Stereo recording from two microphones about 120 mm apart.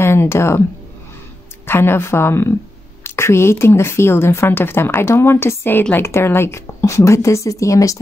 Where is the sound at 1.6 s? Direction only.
20° left (ahead or behind).